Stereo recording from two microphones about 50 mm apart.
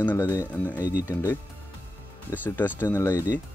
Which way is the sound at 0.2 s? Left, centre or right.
Left.